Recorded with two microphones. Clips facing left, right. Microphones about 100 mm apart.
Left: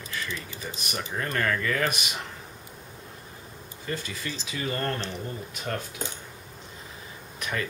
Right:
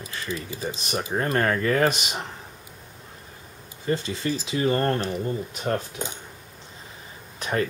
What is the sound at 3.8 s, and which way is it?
Speech, 30° right (ahead or behind).